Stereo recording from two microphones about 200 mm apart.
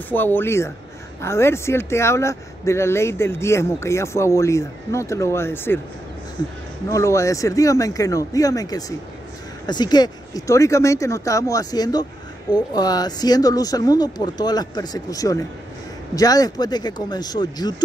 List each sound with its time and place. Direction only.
0.1 s speech: 10° left (ahead or behind)
6.9 s speech: 15° left (ahead or behind)